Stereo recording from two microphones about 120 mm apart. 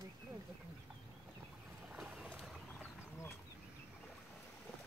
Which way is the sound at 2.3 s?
10° left (ahead or behind).